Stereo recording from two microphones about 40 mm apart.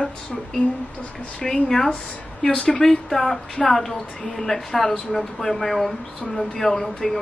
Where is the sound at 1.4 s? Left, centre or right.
Centre.